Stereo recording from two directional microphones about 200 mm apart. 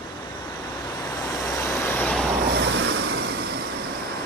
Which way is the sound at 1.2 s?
10° left (ahead or behind).